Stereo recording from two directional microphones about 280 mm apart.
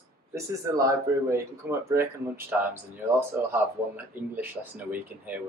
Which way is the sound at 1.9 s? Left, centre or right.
Centre.